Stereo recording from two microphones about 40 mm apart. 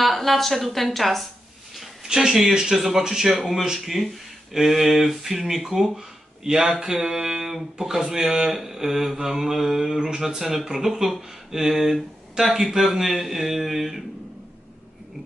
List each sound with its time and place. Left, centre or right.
0.0 s a woman's voice: centre
2.0 s speech: centre
5.9 s a sound: centre
6.6 s speech: centre